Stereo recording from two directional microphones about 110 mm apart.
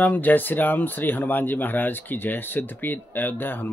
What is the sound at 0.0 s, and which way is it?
Speech, 15° left (ahead or behind).